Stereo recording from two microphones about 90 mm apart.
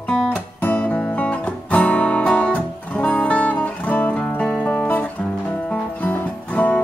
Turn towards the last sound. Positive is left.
turn(degrees=15)  # may be behind; listen again after turning